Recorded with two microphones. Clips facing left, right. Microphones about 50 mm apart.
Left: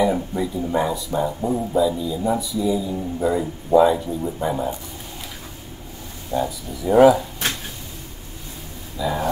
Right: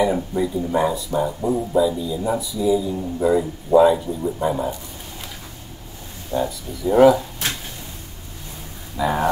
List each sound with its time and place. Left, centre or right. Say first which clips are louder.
0.0 s speech: right 1 dB; centre
6.3 s speech: even; centre
8.9 s speech: right 3 dB; right